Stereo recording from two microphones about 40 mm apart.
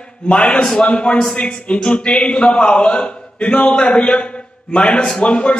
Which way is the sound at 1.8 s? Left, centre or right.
Centre.